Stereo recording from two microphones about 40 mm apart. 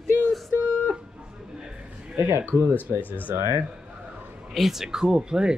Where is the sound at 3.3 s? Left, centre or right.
Right.